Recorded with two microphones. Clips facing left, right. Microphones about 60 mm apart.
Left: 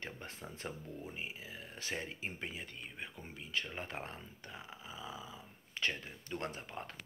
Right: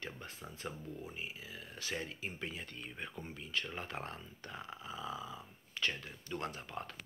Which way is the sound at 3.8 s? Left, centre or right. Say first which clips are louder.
Right 1 dB; left.